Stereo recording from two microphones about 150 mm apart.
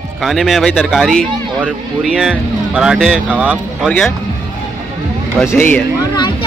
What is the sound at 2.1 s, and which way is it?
Speech, 5° right (ahead or behind).